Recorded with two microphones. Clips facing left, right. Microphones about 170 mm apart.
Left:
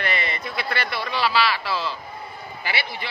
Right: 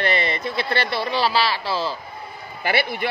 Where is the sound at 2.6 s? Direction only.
50° right (ahead or behind).